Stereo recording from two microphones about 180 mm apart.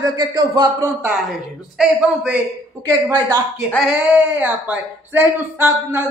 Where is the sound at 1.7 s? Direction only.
5° right (ahead or behind).